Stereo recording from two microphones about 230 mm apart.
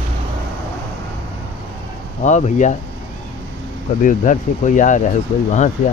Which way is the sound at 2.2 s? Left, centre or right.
Left.